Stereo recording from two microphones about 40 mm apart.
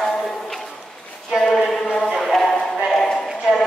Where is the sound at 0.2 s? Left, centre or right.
Centre.